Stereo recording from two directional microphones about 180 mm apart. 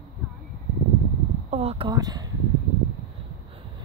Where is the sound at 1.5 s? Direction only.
35° right (ahead or behind).